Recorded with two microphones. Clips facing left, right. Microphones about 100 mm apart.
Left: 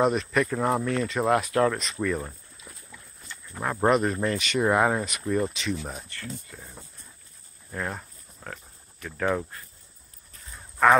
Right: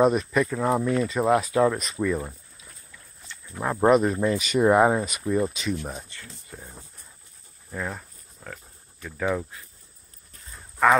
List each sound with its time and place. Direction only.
0.0 s speech: 10° right (ahead or behind)
0.5 s speech: centre (ahead or behind)
3.4 s speech: 10° right (ahead or behind)
7.7 s speech: centre (ahead or behind)
9.1 s speech: 5° right (ahead or behind)